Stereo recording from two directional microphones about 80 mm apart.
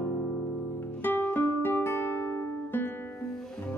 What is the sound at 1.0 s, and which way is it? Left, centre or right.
Music, left.